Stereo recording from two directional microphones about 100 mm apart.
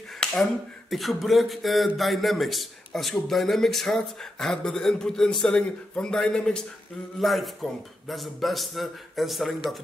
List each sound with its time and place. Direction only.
0.2 s speech: centre (ahead or behind)